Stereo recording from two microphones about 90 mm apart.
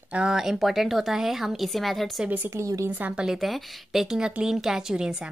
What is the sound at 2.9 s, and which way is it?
Speech, 20° right (ahead or behind).